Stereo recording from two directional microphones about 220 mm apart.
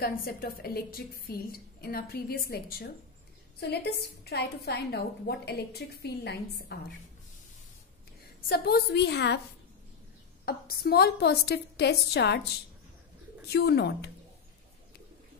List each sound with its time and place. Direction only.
0.0 s a woman's voice: 40° left (ahead or behind)
8.5 s a woman's voice: 45° left (ahead or behind)
10.4 s a woman's voice: 45° left (ahead or behind)
13.5 s a woman's voice: 50° left (ahead or behind)